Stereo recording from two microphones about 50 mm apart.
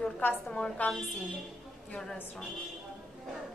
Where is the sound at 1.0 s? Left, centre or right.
Left.